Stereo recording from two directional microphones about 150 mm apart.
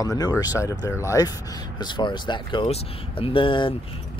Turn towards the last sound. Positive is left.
turn(degrees=35)  # may be behind; listen again after turning